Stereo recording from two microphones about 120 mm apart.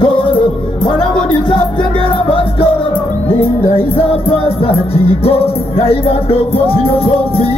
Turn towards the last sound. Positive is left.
turn(degrees=50)  # may be behind; listen again after turning